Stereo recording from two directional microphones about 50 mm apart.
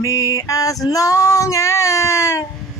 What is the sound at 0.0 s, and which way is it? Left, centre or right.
Mantra, left.